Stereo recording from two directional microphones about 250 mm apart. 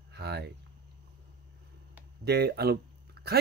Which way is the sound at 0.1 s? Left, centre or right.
Right.